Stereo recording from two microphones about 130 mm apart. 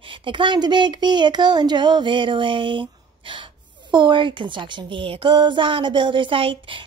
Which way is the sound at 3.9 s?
35° right (ahead or behind).